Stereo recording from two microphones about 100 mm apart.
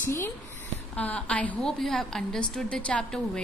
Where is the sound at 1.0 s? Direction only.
10° left (ahead or behind).